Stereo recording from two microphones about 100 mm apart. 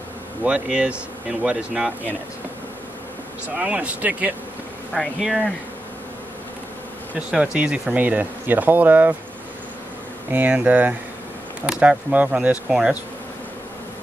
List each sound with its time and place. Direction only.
0.4 s speech: 10° right (ahead or behind)
3.4 s speech: 10° right (ahead or behind)
4.9 s speech: centre (ahead or behind)
7.2 s speech: 10° right (ahead or behind)
10.3 s speech: 15° right (ahead or behind)